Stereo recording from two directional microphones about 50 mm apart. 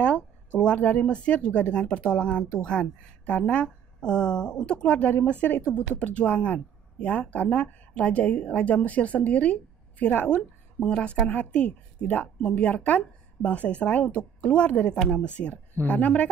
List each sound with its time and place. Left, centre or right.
0.0 s speech: left
3.6 s speech: centre
4.8 s speech: left